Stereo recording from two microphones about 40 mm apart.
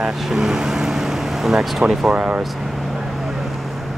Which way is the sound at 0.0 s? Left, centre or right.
Centre.